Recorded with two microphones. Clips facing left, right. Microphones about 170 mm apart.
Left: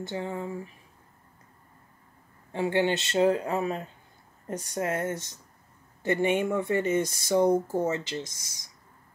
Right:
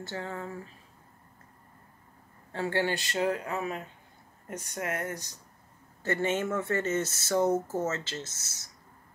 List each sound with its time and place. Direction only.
0.0 s speech: 15° left (ahead or behind)
2.5 s speech: 15° left (ahead or behind)